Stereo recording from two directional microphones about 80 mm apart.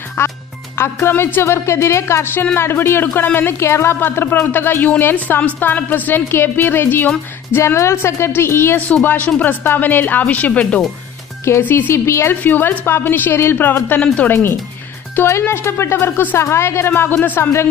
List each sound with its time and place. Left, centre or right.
0.2 s speech: left
8.8 s speech: centre
11.9 s speech: left; by 14.3 s centre
14.3 s speech: left